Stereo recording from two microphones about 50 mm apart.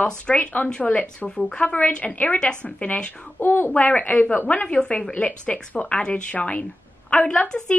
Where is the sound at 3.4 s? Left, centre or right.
Left.